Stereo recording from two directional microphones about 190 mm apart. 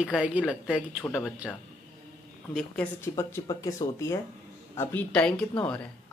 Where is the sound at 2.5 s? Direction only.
Centre (ahead or behind).